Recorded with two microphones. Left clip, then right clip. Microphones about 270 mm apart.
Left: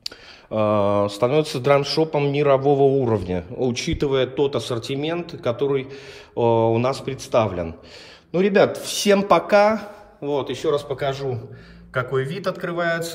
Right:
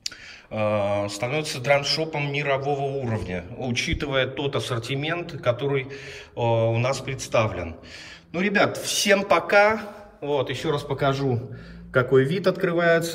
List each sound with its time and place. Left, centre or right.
0.6 s speech: centre
12.1 s speech: centre